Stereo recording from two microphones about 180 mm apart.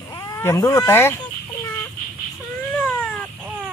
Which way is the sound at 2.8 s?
10° left (ahead or behind).